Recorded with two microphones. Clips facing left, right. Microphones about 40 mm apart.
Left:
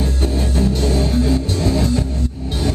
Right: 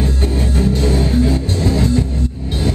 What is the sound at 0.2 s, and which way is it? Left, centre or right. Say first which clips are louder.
Music: left 1 dB; right.